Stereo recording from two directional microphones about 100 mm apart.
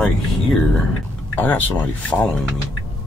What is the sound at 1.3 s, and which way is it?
Speech, 20° left (ahead or behind).